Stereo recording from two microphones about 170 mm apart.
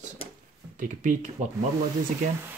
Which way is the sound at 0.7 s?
50° right (ahead or behind).